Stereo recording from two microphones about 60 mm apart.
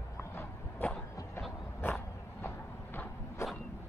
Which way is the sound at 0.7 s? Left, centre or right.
Left.